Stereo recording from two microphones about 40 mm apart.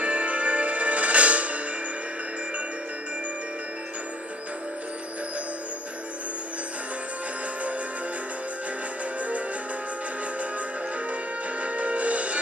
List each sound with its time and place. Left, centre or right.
0.0 s music: right
11.6 s music: right